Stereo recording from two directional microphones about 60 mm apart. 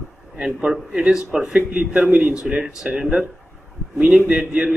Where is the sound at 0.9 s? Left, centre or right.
Centre.